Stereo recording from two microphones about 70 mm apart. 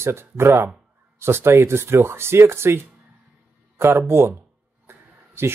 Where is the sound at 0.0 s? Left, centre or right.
Right.